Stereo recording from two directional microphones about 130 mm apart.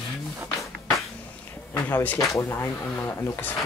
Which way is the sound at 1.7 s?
20° left (ahead or behind).